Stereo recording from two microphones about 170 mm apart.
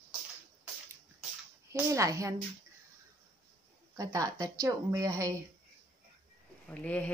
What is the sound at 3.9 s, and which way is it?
A woman's voice, 20° right (ahead or behind).